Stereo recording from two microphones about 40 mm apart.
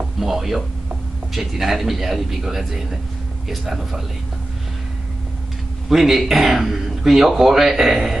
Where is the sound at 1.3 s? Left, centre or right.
Centre.